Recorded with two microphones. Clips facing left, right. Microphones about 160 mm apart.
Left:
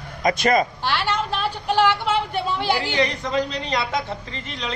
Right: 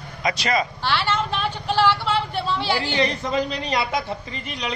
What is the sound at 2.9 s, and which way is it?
Speech, 20° right (ahead or behind).